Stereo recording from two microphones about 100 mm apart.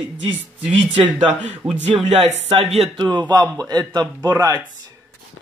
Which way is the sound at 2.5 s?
90° right.